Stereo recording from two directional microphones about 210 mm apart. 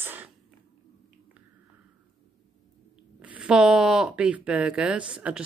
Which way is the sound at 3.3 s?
5° right (ahead or behind).